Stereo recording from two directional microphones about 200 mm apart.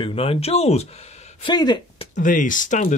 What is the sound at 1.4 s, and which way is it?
Speech, 20° left (ahead or behind).